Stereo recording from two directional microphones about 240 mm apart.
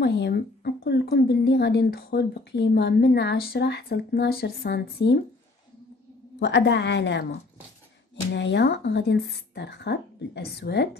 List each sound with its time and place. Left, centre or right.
0.0 s a woman's voice: left
6.4 s speech: left